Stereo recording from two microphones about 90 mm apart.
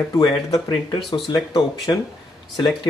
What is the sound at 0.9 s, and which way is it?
Speech, 55° left (ahead or behind).